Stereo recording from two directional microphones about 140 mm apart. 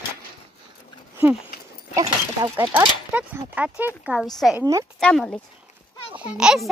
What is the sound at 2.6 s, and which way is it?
A child's voice, 15° right (ahead or behind).